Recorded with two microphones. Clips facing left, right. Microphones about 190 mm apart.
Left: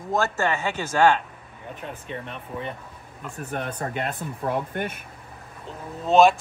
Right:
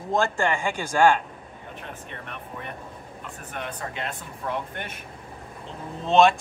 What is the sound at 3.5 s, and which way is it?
Speech, 45° left (ahead or behind).